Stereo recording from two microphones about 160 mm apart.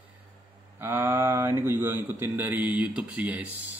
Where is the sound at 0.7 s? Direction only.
15° right (ahead or behind).